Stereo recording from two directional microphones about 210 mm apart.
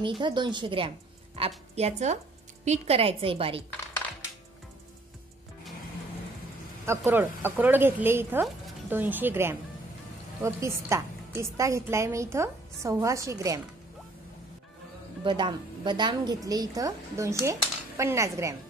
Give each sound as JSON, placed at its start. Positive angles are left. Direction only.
{"t": 0.2, "sound": "a woman's voice", "side_deg": -20}
{"t": 6.9, "sound": "a woman's voice", "side_deg": -10}
{"t": 15.2, "sound": "a woman's voice", "side_deg": -20}